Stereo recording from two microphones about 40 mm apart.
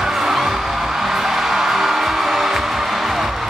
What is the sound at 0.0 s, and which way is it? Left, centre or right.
Music, centre.